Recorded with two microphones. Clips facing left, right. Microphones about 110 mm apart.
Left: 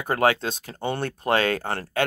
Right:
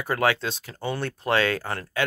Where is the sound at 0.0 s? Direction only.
40° left (ahead or behind).